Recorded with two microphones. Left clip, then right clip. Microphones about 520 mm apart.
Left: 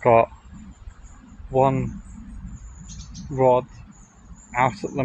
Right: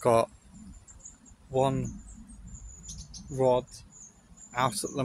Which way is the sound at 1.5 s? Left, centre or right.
Right.